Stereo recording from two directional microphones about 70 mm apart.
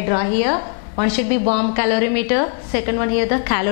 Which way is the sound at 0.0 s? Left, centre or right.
Centre.